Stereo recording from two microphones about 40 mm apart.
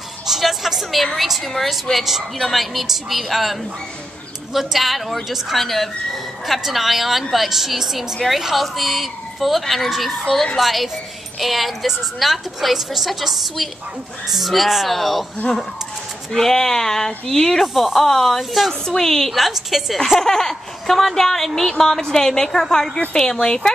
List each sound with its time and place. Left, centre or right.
0.3 s speech: centre
4.6 s a woman's voice: centre
10.2 s speech: centre
10.6 s speech: centre
16.3 s speech: centre
18.4 s speech: centre
18.7 s speech: centre
19.3 s speech: centre
20.2 s speech: centre